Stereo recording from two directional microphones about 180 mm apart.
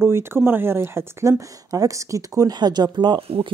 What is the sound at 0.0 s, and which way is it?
Speech, 15° right (ahead or behind).